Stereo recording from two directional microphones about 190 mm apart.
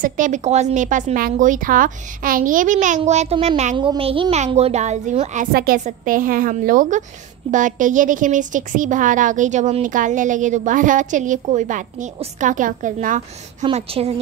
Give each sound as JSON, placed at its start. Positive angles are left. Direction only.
{"t": 0.0, "sound": "a woman's voice", "side_deg": -40}
{"t": 13.7, "sound": "a woman's voice", "side_deg": -30}